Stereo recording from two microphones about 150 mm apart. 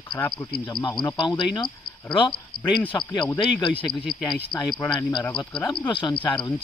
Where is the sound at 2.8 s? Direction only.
30° left (ahead or behind).